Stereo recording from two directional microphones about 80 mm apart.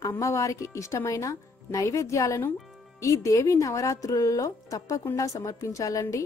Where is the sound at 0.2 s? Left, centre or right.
Left.